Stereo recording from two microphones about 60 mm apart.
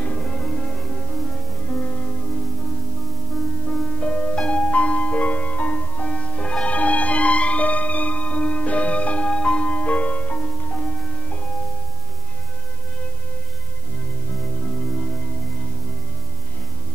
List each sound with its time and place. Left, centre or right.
0.0 s music: centre
3.6 s music: centre
14.3 s music: centre